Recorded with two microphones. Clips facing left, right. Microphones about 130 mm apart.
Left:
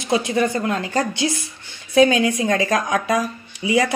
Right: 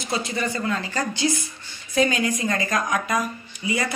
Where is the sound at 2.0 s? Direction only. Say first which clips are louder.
Left 7 dB; 75° left (ahead or behind).